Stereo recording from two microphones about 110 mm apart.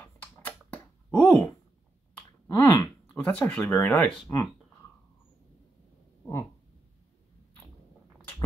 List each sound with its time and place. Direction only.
0.0 s computer keyboard: 15° left (ahead or behind)
2.4 s a sound: 25° left (ahead or behind)
3.3 s speech: 15° left (ahead or behind)
4.3 s speech: 25° left (ahead or behind)